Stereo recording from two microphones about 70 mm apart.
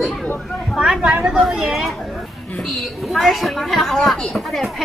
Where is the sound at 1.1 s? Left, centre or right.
Centre.